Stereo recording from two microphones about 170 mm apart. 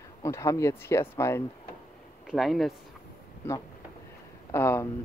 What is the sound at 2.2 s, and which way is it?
Speech, centre (ahead or behind).